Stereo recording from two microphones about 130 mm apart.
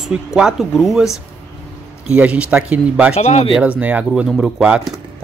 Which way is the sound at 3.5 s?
10° right (ahead or behind).